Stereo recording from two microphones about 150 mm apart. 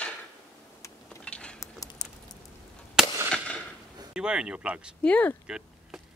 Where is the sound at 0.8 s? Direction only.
20° left (ahead or behind).